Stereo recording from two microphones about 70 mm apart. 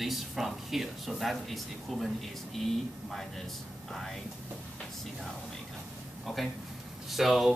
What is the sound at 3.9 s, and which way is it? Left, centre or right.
Speech, centre.